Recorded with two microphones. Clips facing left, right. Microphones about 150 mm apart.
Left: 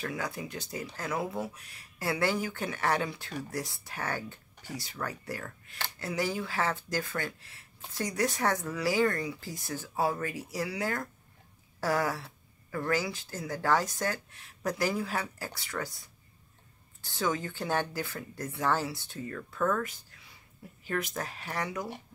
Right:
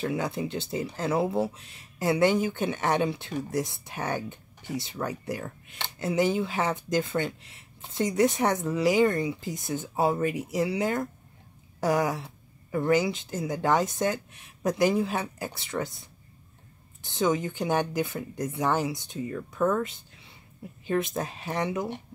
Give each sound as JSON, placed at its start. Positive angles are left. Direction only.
{"t": 0.0, "sound": "speech", "side_deg": -25}